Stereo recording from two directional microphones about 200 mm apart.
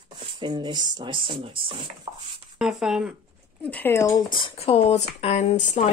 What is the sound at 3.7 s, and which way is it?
Speech, 10° left (ahead or behind).